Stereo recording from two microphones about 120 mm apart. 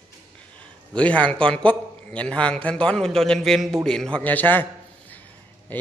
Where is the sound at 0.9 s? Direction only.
10° left (ahead or behind).